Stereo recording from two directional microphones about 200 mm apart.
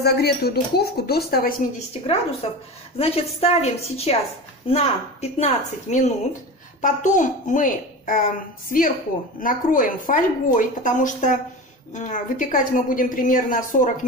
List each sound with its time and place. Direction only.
0.0 s a woman's voice: 50° left (ahead or behind)
2.4 s a woman's voice: 30° left (ahead or behind)